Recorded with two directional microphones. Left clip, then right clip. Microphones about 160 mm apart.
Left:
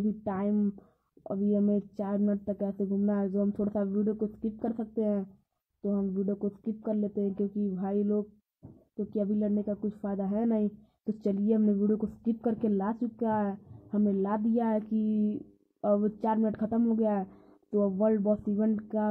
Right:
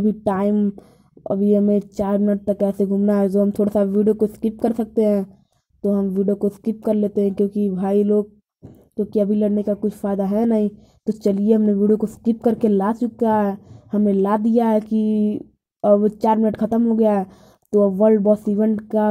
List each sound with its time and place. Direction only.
0.0 s speech: 30° right (ahead or behind)
0.6 s a woman's voice: 20° right (ahead or behind)